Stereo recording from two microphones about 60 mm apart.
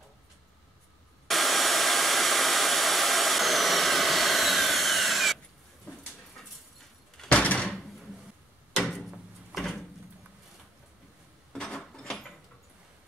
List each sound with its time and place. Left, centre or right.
1.2 s hair dryer: centre
7.2 s door: left
9.5 s door: centre
11.5 s a sound: centre